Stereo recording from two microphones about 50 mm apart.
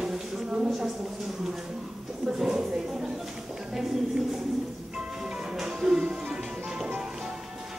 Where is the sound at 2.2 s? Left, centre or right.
Centre.